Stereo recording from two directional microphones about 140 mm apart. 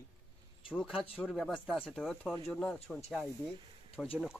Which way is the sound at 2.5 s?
5° left (ahead or behind).